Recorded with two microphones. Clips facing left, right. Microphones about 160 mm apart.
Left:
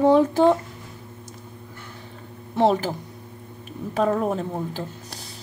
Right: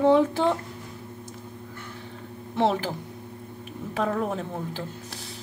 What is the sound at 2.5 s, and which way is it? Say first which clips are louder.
Speech: left 4 dB; 40° left (ahead or behind).